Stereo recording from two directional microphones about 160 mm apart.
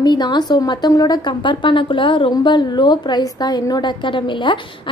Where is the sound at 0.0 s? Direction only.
25° left (ahead or behind).